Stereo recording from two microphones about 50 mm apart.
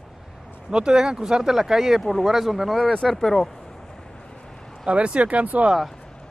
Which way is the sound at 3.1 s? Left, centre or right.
Centre.